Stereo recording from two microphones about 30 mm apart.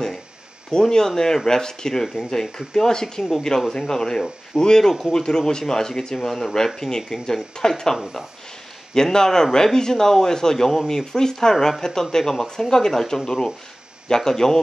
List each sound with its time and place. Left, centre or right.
0.8 s speech: centre
4.8 s speech: centre